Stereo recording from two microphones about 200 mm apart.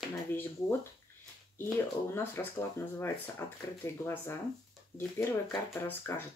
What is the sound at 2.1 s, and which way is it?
Speech, 10° left (ahead or behind).